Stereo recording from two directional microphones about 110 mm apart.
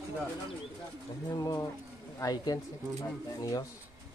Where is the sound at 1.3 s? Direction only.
30° left (ahead or behind).